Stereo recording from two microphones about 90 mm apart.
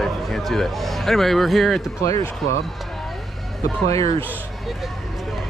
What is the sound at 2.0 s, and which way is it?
Speech, 40° left (ahead or behind).